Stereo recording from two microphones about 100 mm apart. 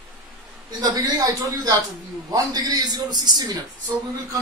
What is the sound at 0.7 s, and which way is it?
A man's voice, 45° right (ahead or behind).